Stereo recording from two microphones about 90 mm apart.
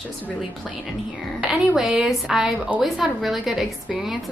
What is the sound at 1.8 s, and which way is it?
A woman's voice, 5° right (ahead or behind).